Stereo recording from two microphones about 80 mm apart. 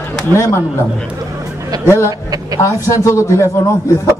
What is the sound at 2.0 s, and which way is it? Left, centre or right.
Speech, right.